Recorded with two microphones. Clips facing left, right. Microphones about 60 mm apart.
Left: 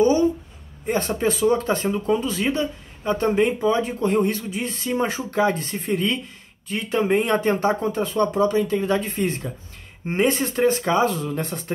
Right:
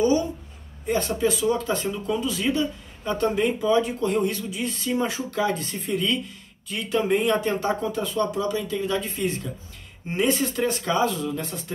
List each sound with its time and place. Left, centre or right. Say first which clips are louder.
0.8 s speech: left 1 dB; left